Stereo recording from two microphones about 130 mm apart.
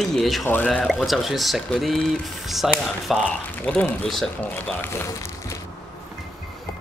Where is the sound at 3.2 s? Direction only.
10° left (ahead or behind).